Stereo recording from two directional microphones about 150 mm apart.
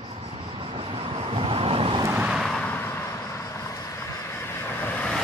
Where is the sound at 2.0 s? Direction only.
10° right (ahead or behind).